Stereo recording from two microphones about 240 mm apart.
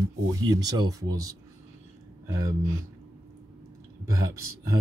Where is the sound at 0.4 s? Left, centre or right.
Centre.